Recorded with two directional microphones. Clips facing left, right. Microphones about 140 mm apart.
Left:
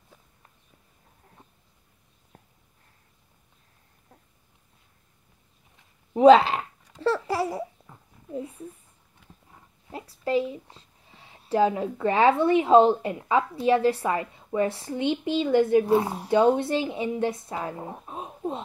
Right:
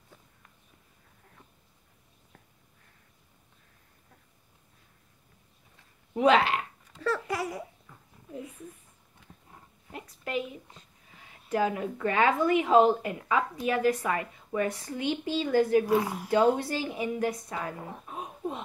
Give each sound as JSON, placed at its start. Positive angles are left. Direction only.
{"t": 6.1, "sound": "speech", "side_deg": 30}
{"t": 7.0, "sound": "babbling", "side_deg": 30}
{"t": 8.4, "sound": "speech", "side_deg": 30}
{"t": 9.8, "sound": "speech", "side_deg": 30}